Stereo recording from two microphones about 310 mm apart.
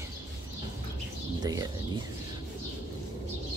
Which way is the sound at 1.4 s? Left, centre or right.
Centre.